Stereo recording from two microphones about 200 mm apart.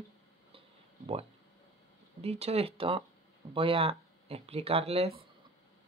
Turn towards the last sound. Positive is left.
turn(degrees=-30)  # may be behind; listen again after turning